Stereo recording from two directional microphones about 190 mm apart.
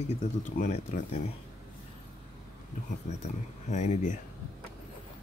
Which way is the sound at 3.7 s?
40° left (ahead or behind).